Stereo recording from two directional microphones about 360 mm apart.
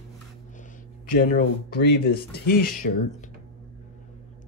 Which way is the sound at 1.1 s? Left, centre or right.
Left.